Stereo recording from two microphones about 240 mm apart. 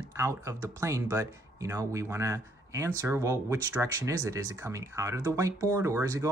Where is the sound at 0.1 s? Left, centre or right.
Centre.